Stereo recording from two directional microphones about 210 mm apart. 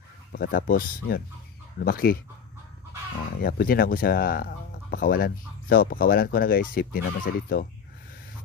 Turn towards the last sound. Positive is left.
turn(degrees=45)  # may be behind; listen again after turning